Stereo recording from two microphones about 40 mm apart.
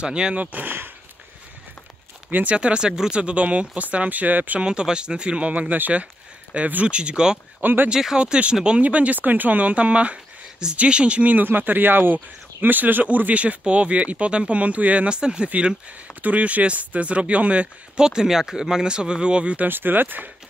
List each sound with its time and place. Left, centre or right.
0.0 s speech: right
0.4 s speech: right
2.5 s speech: right
4.6 s speech: right
5.5 s speech: right
7.6 s speech: right
7.9 s speech: centre
8.2 s speech: right
11.3 s speech: right
15.0 s speech: right
16.2 s speech: right
18.0 s speech: centre; by 19.6 s right
19.7 s speech: right